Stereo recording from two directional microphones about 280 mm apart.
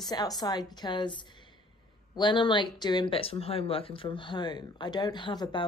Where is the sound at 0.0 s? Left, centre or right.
Centre.